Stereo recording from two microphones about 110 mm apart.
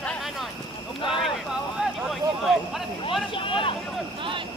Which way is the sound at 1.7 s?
Centre (ahead or behind).